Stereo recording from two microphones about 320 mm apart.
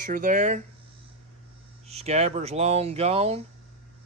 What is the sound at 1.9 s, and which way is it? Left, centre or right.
Speech, centre.